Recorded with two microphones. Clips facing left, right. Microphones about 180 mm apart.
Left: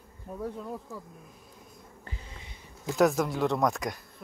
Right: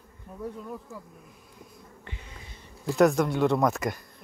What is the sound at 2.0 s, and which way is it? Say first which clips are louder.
Bee: even; 35° left (ahead or behind).